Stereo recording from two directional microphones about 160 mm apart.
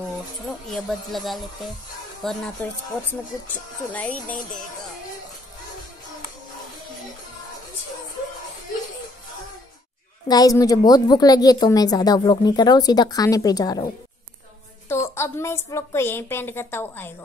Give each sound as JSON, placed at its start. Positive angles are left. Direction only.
{"t": 0.7, "sound": "a woman's voice", "side_deg": 0}
{"t": 10.2, "sound": "a woman's voice", "side_deg": 25}
{"t": 14.9, "sound": "a woman's voice", "side_deg": 15}